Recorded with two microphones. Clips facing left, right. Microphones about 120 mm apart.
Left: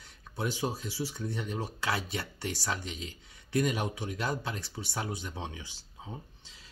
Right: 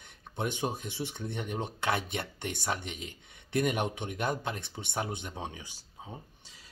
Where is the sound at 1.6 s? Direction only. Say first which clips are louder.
Right 3 dB; 25° right (ahead or behind).